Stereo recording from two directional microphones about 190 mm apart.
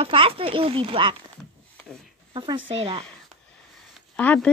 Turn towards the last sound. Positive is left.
turn(degrees=5)  # may be behind; listen again after turning